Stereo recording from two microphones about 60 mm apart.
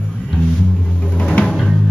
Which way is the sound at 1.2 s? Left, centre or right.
Centre.